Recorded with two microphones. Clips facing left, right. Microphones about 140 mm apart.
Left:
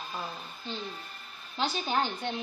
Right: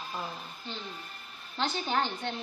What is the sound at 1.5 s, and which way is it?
Speech, 5° left (ahead or behind).